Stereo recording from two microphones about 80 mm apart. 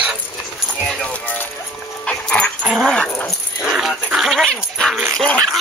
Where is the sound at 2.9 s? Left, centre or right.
Centre.